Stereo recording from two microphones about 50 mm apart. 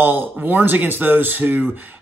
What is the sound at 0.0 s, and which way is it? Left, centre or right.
Speech, right.